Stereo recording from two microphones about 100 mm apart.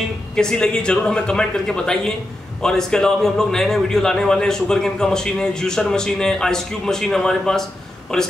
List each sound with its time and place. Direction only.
0.4 s a man's voice: 5° left (ahead or behind)